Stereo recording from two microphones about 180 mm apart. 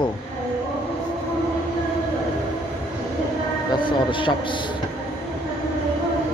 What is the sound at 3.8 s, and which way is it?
Speech, 25° left (ahead or behind).